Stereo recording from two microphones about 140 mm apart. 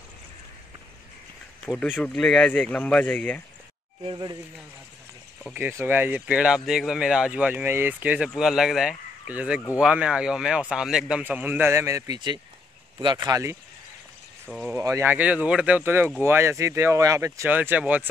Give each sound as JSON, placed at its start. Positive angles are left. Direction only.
{"t": 1.7, "sound": "speech", "side_deg": 0}
{"t": 4.0, "sound": "speech", "side_deg": -35}
{"t": 5.4, "sound": "speech", "side_deg": -10}
{"t": 14.7, "sound": "speech", "side_deg": -20}